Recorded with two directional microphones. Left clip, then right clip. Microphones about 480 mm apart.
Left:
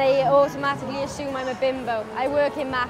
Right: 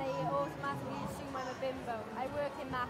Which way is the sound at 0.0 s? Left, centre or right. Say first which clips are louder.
Left 18 dB; left.